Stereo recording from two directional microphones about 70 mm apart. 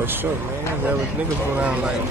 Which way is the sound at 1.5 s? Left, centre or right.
Centre.